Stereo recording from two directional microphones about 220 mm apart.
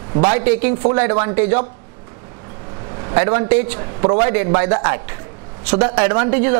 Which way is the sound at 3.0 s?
20° right (ahead or behind).